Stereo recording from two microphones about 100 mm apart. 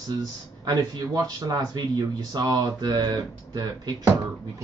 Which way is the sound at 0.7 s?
40° right (ahead or behind).